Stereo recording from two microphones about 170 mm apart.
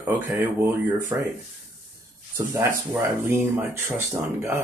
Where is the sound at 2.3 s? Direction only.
15° right (ahead or behind).